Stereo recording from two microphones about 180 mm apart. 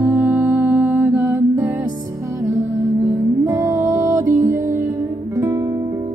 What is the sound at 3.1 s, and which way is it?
Music, 20° right (ahead or behind).